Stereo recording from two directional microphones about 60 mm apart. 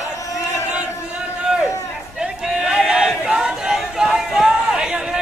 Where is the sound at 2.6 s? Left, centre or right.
Centre.